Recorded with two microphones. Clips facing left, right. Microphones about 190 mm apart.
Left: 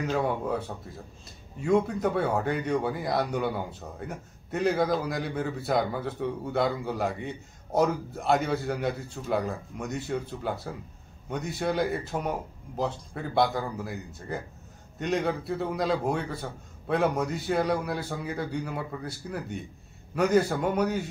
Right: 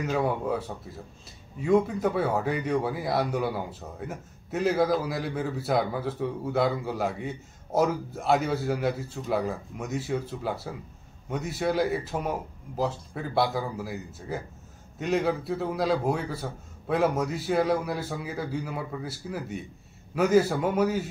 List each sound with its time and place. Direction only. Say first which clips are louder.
0.1 s speech: right 2 dB; centre (ahead or behind)